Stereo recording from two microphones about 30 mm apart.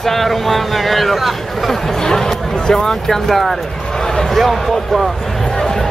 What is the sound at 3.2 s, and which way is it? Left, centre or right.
Speech, centre.